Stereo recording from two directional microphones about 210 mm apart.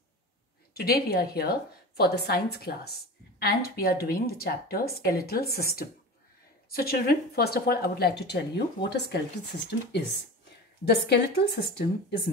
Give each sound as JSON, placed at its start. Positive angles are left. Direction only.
{"t": 0.7, "sound": "speech", "side_deg": 45}